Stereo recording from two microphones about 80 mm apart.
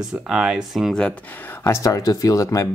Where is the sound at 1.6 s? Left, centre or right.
Left.